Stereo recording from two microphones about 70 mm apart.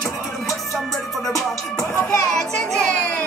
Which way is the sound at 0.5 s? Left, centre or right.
Centre.